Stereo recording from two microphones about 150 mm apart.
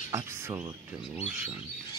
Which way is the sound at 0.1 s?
20° right (ahead or behind).